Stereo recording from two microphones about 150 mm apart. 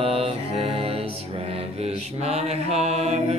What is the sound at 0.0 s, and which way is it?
Music, 40° right (ahead or behind).